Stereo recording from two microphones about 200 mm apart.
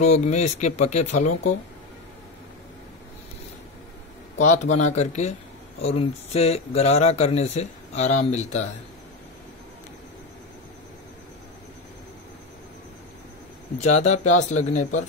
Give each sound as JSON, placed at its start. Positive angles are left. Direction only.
{"t": 0.0, "sound": "speech", "side_deg": 35}
{"t": 4.8, "sound": "speech", "side_deg": 35}
{"t": 13.7, "sound": "speech", "side_deg": 35}